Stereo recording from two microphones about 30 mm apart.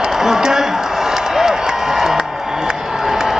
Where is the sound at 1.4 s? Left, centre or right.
Centre.